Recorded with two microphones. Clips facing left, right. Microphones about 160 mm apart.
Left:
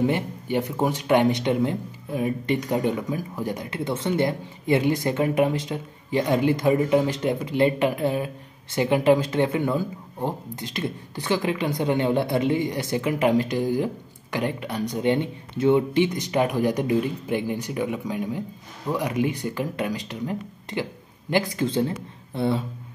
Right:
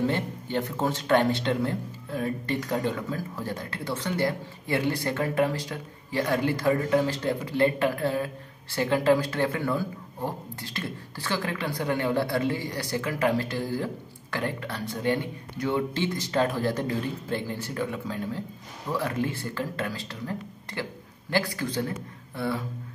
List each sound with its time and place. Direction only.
0.0 s speech: 15° left (ahead or behind)